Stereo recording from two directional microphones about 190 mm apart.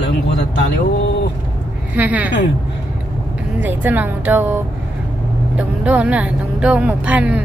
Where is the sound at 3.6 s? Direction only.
10° right (ahead or behind).